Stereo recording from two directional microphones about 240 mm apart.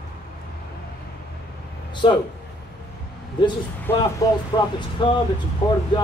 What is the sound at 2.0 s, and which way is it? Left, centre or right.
Speech, left.